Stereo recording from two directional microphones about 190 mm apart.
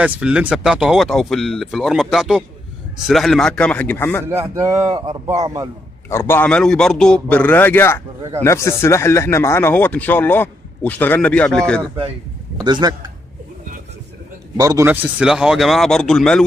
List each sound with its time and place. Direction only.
0.0 s speech: 5° right (ahead or behind); by 4.3 s 10° left (ahead or behind)
4.3 s speech: 15° right (ahead or behind)
6.0 s speech: 15° left (ahead or behind)
12.5 s a man's voice: 20° right (ahead or behind)
14.6 s speech: 15° right (ahead or behind); by 16.4 s 5° left (ahead or behind)